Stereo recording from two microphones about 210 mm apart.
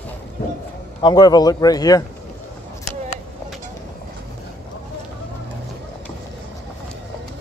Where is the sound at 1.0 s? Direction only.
20° left (ahead or behind).